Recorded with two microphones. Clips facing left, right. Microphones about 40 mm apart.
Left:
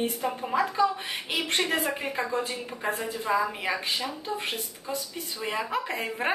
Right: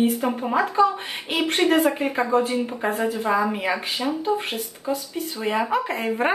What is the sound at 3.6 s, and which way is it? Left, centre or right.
A woman's voice, centre.